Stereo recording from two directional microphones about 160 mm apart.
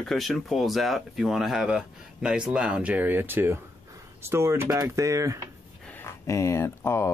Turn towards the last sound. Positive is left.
turn(degrees=15)  # may be behind; listen again after turning